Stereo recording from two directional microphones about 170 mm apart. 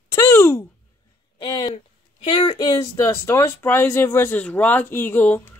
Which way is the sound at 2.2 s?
30° left (ahead or behind).